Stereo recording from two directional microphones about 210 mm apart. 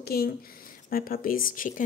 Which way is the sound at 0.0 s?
45° left (ahead or behind).